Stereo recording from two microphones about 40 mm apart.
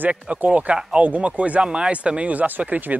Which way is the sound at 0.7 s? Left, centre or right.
Centre.